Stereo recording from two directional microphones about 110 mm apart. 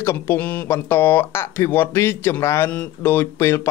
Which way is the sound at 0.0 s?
25° left (ahead or behind).